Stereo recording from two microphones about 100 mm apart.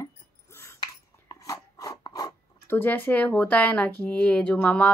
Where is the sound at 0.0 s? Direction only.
30° left (ahead or behind).